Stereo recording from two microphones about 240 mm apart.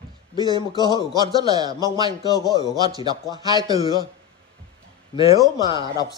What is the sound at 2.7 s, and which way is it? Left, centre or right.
A man's voice, centre.